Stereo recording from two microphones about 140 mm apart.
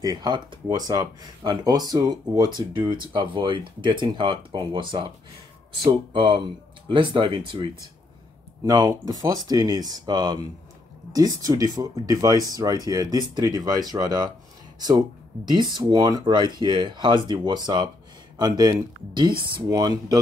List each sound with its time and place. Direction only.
0.0 s speech: 30° right (ahead or behind)